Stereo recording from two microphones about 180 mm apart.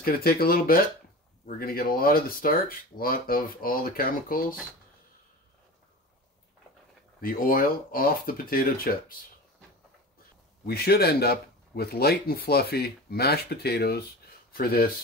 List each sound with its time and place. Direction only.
0.0 s speech: 55° left (ahead or behind)
7.2 s speech: 55° left (ahead or behind)
10.6 s speech: 60° left (ahead or behind)